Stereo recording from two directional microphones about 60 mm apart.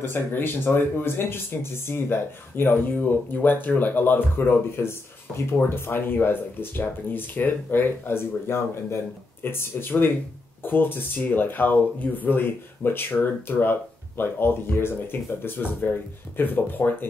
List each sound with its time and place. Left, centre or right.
0.0 s speech: left